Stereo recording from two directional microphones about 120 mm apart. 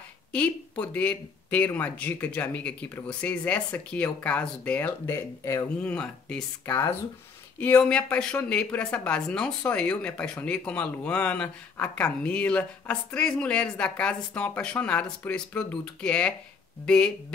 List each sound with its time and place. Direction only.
0.3 s speech: 10° left (ahead or behind)
5.8 s speech: 10° left (ahead or behind)
6.6 s speech: 25° left (ahead or behind)
7.5 s speech: 15° left (ahead or behind)